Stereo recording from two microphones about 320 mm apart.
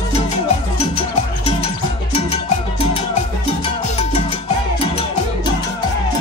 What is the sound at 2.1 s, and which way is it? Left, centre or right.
Salsa music, centre.